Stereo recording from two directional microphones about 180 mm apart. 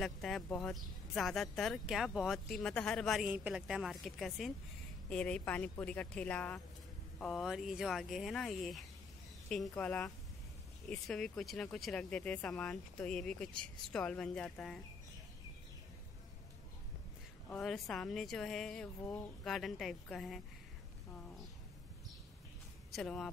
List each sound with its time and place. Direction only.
0.0 s a woman's voice: centre (ahead or behind)
17.5 s speech: centre (ahead or behind)
22.9 s speech: centre (ahead or behind)